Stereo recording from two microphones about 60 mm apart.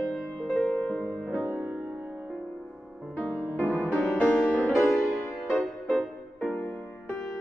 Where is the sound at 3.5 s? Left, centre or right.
Left.